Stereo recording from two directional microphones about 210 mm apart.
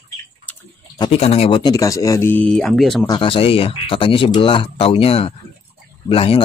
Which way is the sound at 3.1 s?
25° left (ahead or behind).